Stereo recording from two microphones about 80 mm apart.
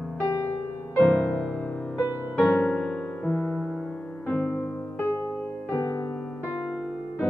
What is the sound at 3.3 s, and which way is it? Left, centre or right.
Music, left.